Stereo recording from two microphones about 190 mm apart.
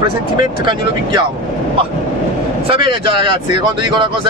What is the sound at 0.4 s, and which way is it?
Speech, 25° right (ahead or behind).